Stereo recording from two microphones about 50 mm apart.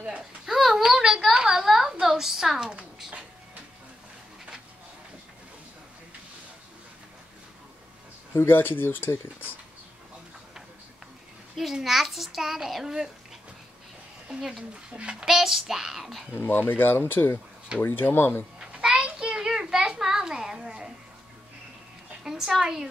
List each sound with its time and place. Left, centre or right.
0.2 s a sound: centre
8.4 s speech: left
11.8 s a child's voice: centre
14.9 s a child's voice: right
15.3 s a child's voice: centre
16.3 s speech: left
18.6 s a sound: centre
22.2 s a woman's voice: centre